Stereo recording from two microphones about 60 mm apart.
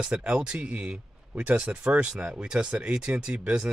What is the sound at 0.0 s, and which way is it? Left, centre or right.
Speech, centre.